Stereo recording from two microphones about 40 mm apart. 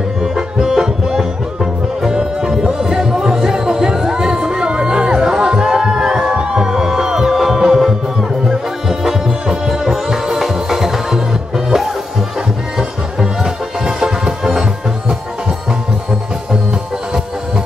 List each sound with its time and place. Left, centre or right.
0.2 s music: centre